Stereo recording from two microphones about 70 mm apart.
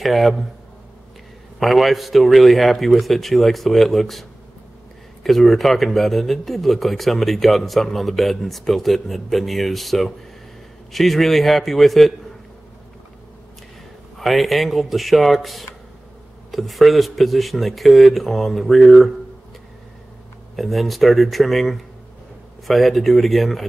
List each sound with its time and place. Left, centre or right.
0.0 s speech: centre
1.6 s speech: centre
14.1 s speech: centre
20.5 s speech: centre